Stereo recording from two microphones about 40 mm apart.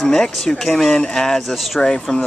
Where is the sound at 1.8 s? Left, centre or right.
Centre.